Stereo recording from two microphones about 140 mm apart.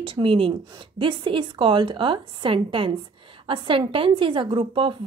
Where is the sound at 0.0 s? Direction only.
40° right (ahead or behind).